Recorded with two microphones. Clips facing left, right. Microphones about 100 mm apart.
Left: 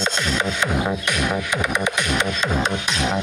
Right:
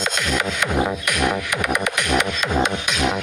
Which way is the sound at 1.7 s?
25° left (ahead or behind).